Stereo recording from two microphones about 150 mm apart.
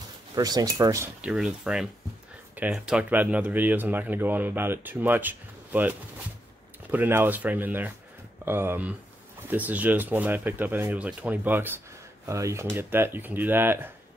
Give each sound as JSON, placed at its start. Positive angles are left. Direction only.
{"t": 0.3, "sound": "speech", "side_deg": -25}
{"t": 1.2, "sound": "speech", "side_deg": -5}